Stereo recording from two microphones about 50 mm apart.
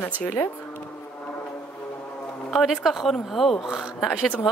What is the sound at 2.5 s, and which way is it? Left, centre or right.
Speech, centre.